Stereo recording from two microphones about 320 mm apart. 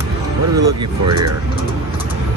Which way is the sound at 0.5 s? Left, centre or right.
Right.